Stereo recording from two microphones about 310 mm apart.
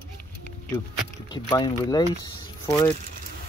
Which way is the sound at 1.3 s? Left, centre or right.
Centre.